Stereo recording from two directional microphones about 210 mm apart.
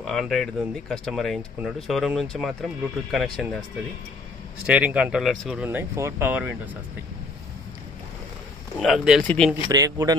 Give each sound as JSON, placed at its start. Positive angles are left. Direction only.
{"t": 0.0, "sound": "speech", "side_deg": 0}
{"t": 4.6, "sound": "speech", "side_deg": -5}
{"t": 8.7, "sound": "speech", "side_deg": 0}
{"t": 9.7, "sound": "speech", "side_deg": -15}